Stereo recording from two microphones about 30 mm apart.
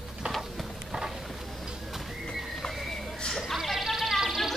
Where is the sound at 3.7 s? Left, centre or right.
Centre.